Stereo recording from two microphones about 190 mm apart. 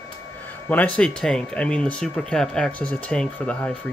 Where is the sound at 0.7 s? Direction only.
10° left (ahead or behind).